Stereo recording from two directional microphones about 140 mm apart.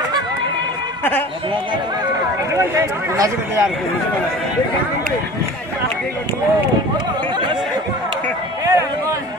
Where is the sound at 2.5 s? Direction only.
20° right (ahead or behind).